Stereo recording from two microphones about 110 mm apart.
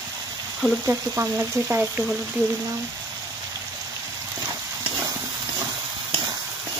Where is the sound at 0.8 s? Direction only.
25° right (ahead or behind).